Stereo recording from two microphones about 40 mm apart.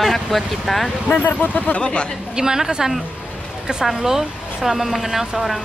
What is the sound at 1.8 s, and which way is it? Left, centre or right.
Speech, left.